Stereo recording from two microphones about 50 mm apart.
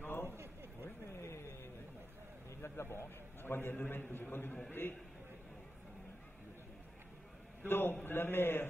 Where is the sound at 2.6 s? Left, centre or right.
Left.